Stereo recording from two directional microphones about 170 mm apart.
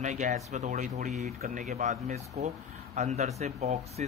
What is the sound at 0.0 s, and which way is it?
Speech, 45° right (ahead or behind).